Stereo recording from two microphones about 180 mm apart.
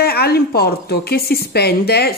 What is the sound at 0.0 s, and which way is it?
A woman's voice, 60° left (ahead or behind).